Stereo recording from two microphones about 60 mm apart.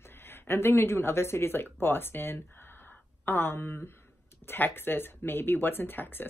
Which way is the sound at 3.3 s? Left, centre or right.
Left.